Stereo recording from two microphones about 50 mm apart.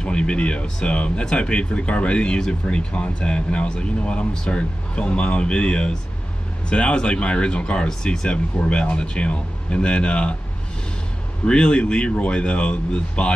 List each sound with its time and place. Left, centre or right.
0.0 s speech: centre
11.4 s speech: left